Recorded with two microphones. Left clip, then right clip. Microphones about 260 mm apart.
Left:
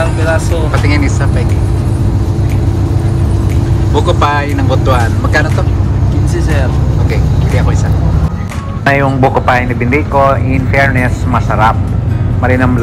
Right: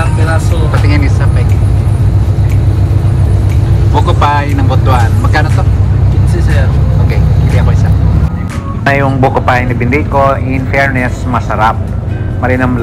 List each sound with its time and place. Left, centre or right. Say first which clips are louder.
3.9 s speech: right 1 dB; centre
8.8 s speech: even; centre